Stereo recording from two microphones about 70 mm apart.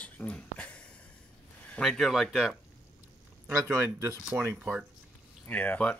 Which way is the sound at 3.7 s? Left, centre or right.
Right.